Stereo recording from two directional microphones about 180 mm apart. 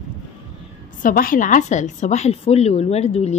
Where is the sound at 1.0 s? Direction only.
50° left (ahead or behind).